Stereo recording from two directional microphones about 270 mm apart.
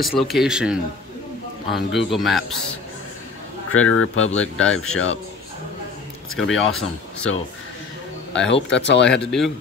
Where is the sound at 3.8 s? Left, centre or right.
Left.